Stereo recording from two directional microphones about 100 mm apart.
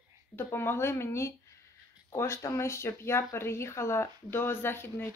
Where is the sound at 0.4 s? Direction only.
25° left (ahead or behind).